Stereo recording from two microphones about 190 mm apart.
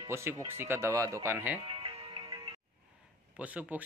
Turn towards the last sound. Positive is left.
turn(degrees=-10)  # may be behind; listen again after turning